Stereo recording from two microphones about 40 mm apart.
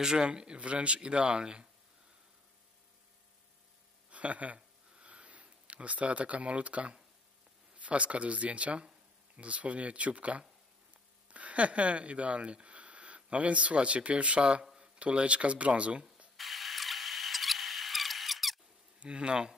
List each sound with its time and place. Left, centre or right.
0.0 s speech: centre
4.1 s speech: right
4.6 s a sound: right
7.7 s speech: right
16.3 s a sound: centre
18.9 s speech: right